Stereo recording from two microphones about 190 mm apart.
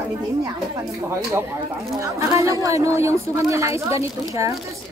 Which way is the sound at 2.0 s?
15° right (ahead or behind).